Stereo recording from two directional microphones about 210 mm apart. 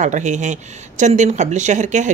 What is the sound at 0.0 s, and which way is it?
Speech, 35° right (ahead or behind).